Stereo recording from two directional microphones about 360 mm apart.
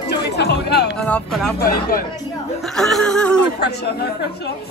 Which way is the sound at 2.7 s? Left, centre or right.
Centre.